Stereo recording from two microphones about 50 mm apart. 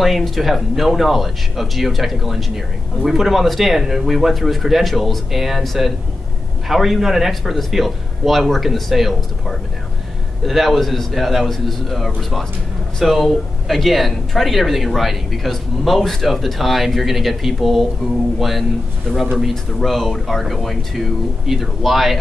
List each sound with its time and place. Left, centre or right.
0.0 s speech: centre